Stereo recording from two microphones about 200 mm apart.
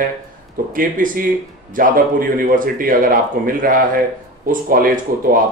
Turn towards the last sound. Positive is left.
turn(degrees=-45)  # may be behind; listen again after turning